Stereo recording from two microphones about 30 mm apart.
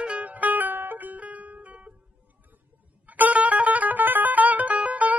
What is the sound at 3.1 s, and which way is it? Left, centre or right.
Music, right.